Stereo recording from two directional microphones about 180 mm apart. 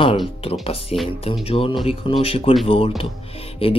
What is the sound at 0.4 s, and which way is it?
Speech, 30° left (ahead or behind).